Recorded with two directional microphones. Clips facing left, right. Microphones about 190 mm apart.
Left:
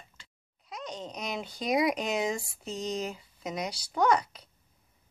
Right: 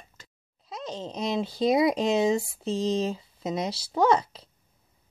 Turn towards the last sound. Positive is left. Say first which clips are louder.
# right 3 dB
turn(degrees=-25)  # may be behind; listen again after turning